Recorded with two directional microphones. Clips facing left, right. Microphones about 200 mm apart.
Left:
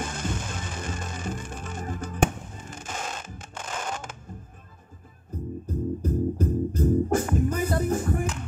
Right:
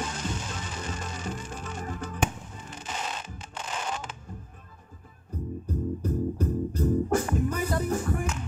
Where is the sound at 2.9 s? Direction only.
50° left (ahead or behind).